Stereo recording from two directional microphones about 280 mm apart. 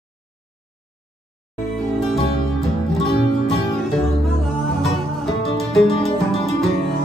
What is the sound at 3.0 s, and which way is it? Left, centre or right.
Music, left.